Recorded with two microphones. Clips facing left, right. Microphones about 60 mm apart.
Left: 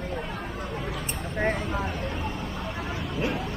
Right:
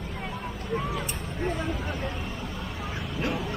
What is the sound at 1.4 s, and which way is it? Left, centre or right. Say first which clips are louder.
Vehicle: left 3 dB; left.